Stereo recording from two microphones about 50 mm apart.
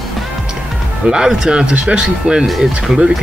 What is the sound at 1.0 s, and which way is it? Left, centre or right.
Speech, centre.